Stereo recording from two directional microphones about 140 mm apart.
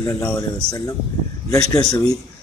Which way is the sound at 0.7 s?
25° left (ahead or behind).